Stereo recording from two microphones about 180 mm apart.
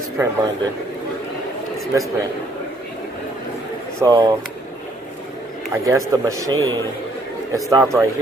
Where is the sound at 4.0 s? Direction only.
25° right (ahead or behind).